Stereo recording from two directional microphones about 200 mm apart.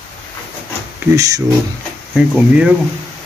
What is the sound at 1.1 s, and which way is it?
Speech, 15° right (ahead or behind).